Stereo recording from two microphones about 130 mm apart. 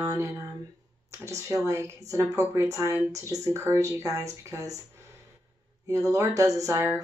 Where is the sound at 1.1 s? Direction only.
25° right (ahead or behind).